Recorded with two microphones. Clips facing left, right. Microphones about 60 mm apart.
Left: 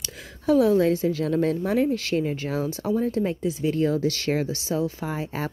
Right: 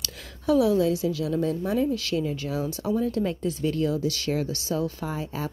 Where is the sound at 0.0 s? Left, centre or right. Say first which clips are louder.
Left 2 dB; left.